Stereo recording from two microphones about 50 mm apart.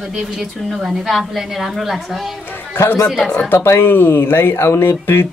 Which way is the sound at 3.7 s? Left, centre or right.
Left.